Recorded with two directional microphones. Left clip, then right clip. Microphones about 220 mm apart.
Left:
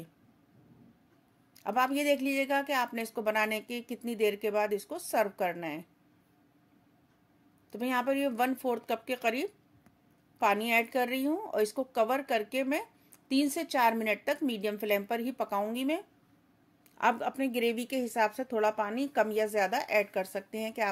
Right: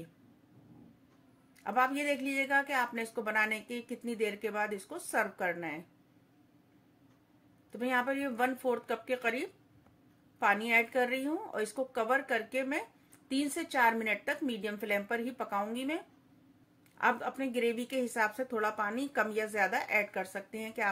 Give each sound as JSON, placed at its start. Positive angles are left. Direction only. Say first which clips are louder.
{"t": 1.6, "sound": "speech", "louder": "left 1 dB", "side_deg": 45}
{"t": 7.7, "sound": "speech", "louder": "left 2 dB", "side_deg": 45}
{"t": 17.0, "sound": "a woman's voice", "louder": "left 2 dB", "side_deg": 40}